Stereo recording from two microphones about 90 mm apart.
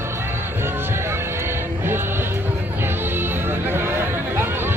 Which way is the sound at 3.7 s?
25° right (ahead or behind).